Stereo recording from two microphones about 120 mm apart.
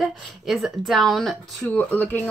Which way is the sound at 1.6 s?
15° left (ahead or behind).